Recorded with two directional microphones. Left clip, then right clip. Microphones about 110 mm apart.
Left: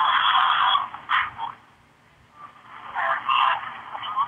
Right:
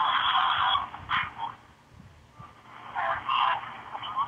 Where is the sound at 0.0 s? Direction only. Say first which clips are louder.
Left 5 dB; 15° right (ahead or behind).